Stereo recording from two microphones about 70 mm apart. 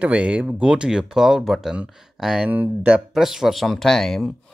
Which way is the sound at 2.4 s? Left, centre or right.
Centre.